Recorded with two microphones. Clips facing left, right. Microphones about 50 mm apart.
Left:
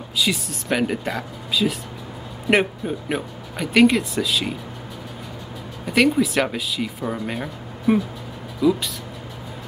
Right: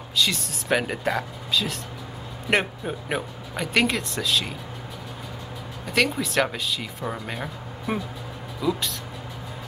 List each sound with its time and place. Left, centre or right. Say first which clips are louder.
0.2 s speech: left 2 dB; centre
2.8 s speech: left 3 dB; centre
5.9 s speech: left 6 dB; centre